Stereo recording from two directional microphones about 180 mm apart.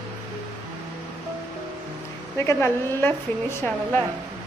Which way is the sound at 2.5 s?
15° left (ahead or behind).